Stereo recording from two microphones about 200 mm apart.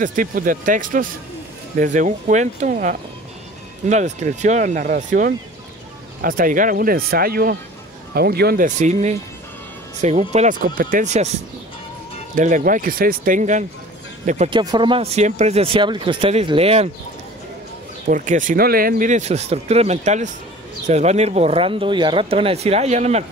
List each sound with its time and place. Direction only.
0.0 s speech: 40° right (ahead or behind)
12.4 s speech: 40° right (ahead or behind)
14.5 s speech: 20° right (ahead or behind)
18.0 s speech: 40° right (ahead or behind)